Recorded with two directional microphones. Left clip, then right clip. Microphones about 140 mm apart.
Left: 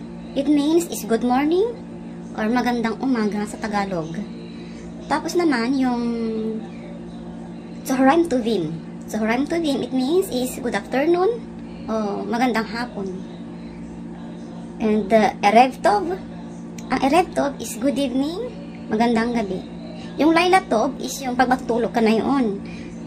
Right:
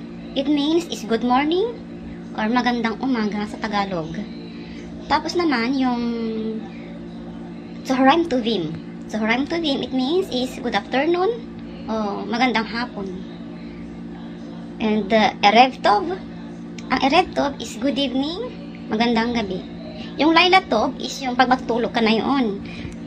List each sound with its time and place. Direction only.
0.3 s a woman's voice: 35° left (ahead or behind)
5.0 s a woman's voice: 30° left (ahead or behind)
7.9 s a woman's voice: 30° left (ahead or behind)
14.8 s a woman's voice: 30° left (ahead or behind)